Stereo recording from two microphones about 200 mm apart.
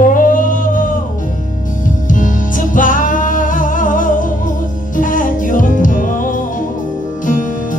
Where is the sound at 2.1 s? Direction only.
40° left (ahead or behind).